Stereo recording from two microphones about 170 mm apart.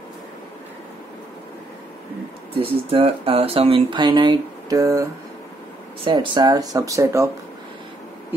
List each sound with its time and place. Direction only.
2.5 s speech: 35° right (ahead or behind); by 7.2 s 20° right (ahead or behind)